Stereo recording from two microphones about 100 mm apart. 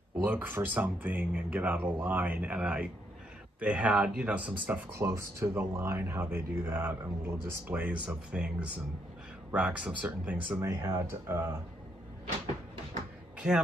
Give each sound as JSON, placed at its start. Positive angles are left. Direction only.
{"t": 0.2, "sound": "speech", "side_deg": -20}
{"t": 10.6, "sound": "speech", "side_deg": -25}
{"t": 13.4, "sound": "speech", "side_deg": -5}